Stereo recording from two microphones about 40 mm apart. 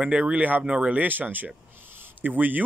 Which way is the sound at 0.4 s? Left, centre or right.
Right.